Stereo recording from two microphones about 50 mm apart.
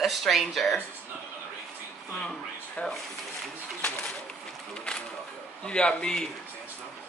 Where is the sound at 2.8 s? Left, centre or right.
Left.